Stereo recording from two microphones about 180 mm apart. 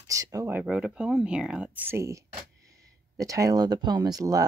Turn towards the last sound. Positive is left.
turn(degrees=-20)  # may be behind; listen again after turning